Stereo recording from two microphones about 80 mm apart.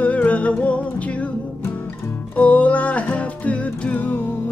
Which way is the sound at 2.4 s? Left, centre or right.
Centre.